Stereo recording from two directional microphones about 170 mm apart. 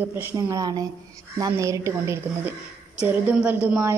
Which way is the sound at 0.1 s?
20° right (ahead or behind).